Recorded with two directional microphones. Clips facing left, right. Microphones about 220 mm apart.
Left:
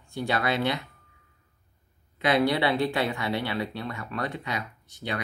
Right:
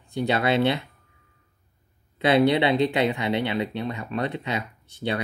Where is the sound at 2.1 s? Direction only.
25° right (ahead or behind).